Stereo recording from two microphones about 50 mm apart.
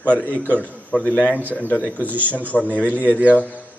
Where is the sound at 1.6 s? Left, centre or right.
Left.